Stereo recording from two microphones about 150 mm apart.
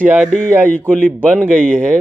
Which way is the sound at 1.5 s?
10° right (ahead or behind).